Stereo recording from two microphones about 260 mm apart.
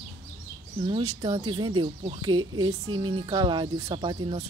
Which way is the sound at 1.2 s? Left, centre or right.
Centre.